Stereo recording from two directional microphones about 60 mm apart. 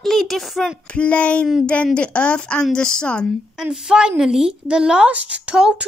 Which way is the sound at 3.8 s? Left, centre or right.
Centre.